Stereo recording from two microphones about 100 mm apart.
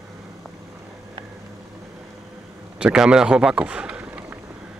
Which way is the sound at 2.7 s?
10° right (ahead or behind).